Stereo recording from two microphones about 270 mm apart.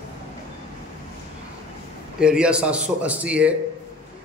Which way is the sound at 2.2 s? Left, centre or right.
Centre.